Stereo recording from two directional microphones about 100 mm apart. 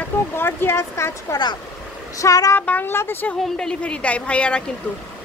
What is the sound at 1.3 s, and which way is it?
Speech, 45° left (ahead or behind).